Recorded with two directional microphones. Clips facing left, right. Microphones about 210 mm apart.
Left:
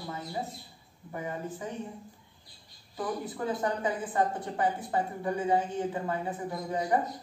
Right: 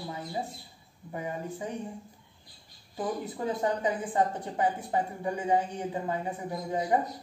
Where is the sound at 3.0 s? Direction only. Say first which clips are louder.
Right 1 dB; 20° right (ahead or behind).